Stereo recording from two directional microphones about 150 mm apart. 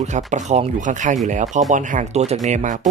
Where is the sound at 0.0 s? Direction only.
50° right (ahead or behind).